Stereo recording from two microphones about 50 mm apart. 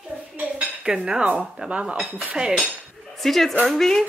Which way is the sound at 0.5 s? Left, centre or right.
Centre.